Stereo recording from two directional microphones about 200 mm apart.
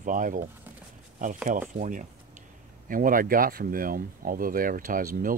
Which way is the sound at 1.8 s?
40° right (ahead or behind).